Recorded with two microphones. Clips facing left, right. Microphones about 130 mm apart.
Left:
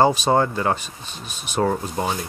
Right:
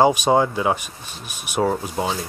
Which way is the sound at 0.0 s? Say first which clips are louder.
Right 1 dB; 15° right (ahead or behind).